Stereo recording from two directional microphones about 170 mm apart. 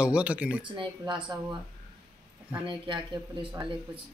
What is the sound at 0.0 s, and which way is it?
Speech, 5° right (ahead or behind).